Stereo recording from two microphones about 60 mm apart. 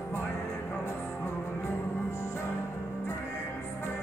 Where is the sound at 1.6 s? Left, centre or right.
Left.